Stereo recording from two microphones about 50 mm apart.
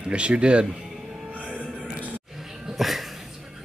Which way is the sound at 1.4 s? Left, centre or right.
Right.